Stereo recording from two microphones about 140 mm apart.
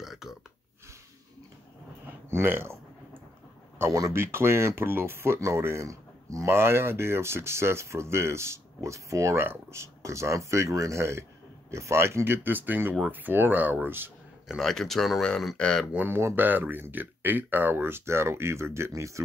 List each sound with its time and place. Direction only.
0.0 s gasp: centre (ahead or behind)
2.2 s speech: 15° right (ahead or behind)
14.6 s speech: centre (ahead or behind)
15.9 s speech: 15° right (ahead or behind)